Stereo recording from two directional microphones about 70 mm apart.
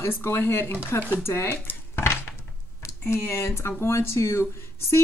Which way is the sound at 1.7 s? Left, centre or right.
Left.